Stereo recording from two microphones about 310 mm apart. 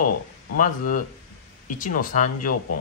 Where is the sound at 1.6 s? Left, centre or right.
Left.